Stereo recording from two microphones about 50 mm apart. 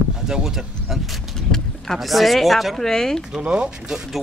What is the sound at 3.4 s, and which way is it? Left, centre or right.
Speech, centre.